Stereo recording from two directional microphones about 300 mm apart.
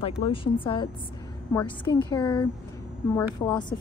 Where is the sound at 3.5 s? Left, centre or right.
Centre.